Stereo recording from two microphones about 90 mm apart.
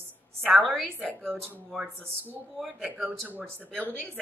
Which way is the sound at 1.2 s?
25° right (ahead or behind).